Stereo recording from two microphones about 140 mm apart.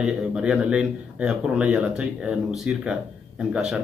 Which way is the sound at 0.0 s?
5° right (ahead or behind).